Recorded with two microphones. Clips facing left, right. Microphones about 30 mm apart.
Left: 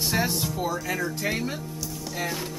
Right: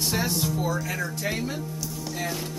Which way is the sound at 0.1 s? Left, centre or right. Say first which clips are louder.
Even; centre.